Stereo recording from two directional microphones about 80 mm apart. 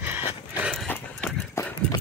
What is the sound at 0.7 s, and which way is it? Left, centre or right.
Horse, centre.